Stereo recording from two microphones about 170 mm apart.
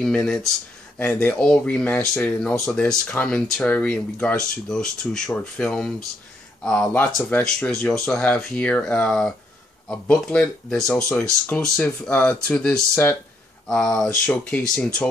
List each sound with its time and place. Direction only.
0.0 s speech: 5° left (ahead or behind)